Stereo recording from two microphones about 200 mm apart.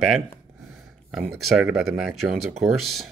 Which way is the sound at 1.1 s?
Centre (ahead or behind).